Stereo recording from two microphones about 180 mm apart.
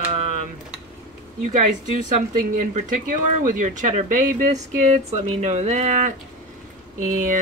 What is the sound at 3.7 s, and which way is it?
Speech, 45° right (ahead or behind).